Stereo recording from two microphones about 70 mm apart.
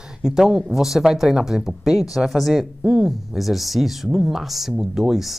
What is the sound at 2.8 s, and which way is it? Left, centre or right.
Speech, centre.